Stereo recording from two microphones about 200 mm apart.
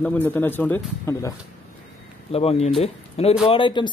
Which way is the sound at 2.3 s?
30° left (ahead or behind).